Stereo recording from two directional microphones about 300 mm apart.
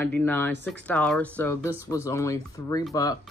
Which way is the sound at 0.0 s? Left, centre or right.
Centre.